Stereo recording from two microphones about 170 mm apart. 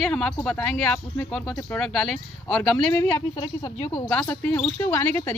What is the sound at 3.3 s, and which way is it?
Speech, 25° left (ahead or behind).